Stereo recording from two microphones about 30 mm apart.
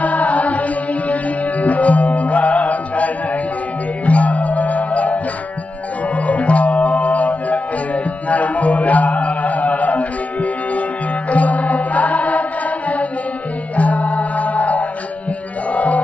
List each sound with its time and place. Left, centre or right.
0.0 s music: left
15.7 s chant: left